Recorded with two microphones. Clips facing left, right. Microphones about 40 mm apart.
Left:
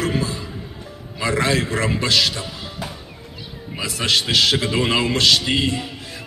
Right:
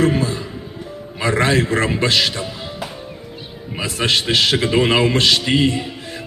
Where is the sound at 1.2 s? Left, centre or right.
Right.